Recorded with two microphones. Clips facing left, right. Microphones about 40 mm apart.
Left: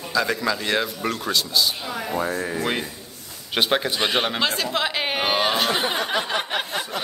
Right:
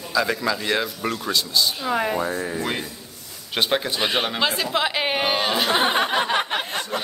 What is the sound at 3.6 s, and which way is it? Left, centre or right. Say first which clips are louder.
A man's voice: left 1 dB; centre.